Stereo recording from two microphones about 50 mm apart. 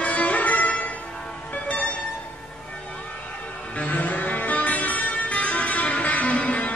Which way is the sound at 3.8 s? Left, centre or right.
Left.